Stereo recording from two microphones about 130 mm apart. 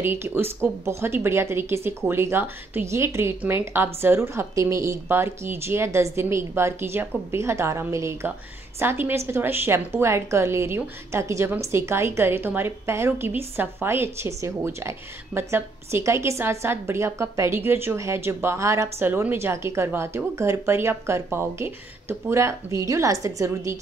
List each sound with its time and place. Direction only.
0.0 s a woman's voice: 15° right (ahead or behind)